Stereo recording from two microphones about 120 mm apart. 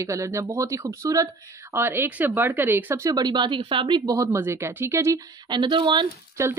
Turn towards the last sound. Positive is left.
turn(degrees=-25)  # may be behind; listen again after turning